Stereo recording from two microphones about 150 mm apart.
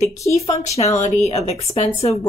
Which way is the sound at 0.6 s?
45° left (ahead or behind).